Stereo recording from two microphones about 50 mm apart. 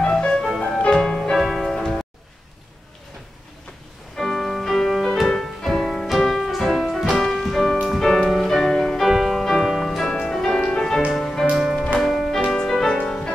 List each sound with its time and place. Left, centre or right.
0.0 s music: centre
4.2 s music: centre
9.0 s music: centre
11.5 s music: centre